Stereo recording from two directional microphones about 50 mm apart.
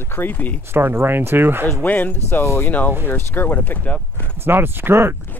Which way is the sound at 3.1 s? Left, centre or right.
Left.